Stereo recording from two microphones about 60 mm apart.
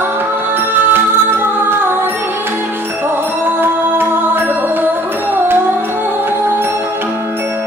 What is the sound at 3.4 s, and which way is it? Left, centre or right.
Music, right.